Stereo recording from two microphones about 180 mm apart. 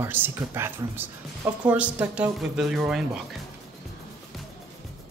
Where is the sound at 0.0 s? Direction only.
10° right (ahead or behind).